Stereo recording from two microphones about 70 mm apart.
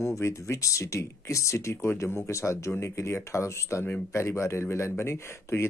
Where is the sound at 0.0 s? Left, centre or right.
Left.